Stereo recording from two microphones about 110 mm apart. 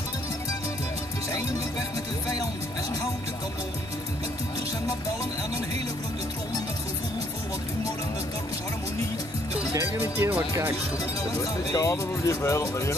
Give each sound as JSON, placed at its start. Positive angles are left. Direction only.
{"t": 9.8, "sound": "speech", "side_deg": -25}
{"t": 11.3, "sound": "speech", "side_deg": 30}